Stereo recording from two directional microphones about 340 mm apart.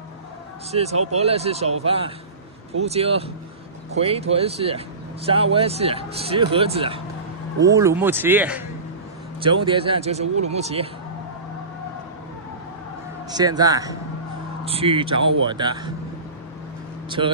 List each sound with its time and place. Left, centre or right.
0.7 s speech: centre
13.4 s speech: centre